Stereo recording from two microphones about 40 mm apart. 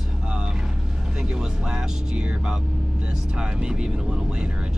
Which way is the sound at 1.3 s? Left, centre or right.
Right.